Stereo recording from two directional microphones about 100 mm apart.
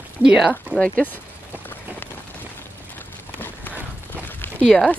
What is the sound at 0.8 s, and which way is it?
Speech, 15° left (ahead or behind).